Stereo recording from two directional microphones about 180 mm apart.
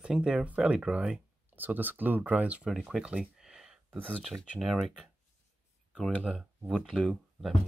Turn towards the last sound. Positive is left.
turn(degrees=0)  # may be behind; listen again after turning